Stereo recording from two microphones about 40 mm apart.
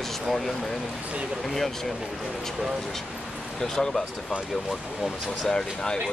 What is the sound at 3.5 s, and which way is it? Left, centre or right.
Speech, centre.